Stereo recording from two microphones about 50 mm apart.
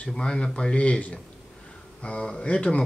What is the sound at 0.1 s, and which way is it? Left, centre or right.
Speech, centre.